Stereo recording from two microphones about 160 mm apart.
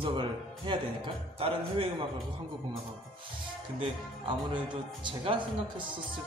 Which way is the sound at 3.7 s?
30° right (ahead or behind).